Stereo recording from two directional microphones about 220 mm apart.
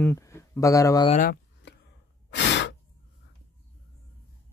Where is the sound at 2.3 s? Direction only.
55° left (ahead or behind).